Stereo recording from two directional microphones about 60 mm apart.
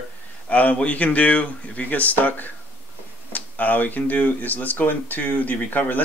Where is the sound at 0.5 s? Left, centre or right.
Left.